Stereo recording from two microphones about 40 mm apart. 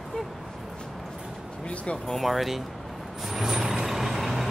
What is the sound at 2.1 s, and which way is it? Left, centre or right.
Speech, centre.